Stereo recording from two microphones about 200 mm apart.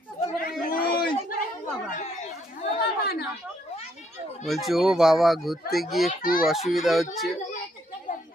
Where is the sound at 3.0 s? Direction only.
50° left (ahead or behind).